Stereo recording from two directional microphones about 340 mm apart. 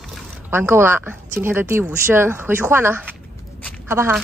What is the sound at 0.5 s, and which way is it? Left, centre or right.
A woman's voice, centre.